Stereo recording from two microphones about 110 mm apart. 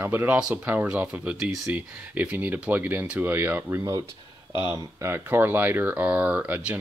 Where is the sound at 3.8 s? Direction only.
30° right (ahead or behind); by 6.7 s 10° right (ahead or behind).